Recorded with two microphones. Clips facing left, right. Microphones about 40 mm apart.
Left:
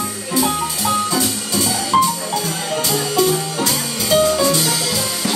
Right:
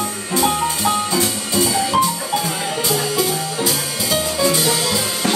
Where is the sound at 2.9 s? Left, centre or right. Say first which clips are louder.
Left 3 dB; centre.